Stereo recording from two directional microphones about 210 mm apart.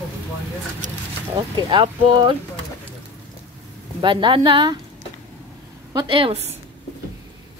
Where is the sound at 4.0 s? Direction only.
25° right (ahead or behind).